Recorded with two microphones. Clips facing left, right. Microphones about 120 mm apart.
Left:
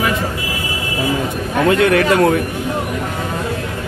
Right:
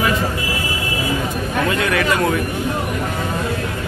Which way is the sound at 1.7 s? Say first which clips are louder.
Left 8 dB; 60° left (ahead or behind).